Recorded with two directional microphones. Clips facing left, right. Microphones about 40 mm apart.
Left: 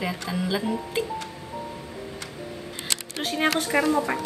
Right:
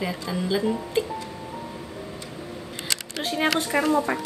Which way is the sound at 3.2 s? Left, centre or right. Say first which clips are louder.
Even; centre.